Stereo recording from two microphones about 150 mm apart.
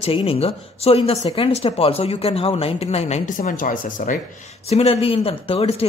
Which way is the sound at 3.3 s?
60° left (ahead or behind).